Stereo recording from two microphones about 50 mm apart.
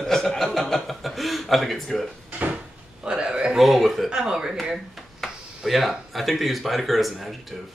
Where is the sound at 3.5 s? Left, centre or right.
Centre.